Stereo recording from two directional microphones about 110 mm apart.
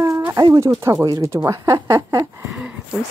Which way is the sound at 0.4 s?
35° right (ahead or behind).